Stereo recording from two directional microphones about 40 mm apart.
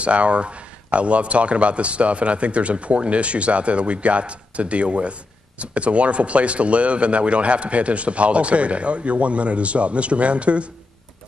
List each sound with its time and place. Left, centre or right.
0.0 s a man's voice: right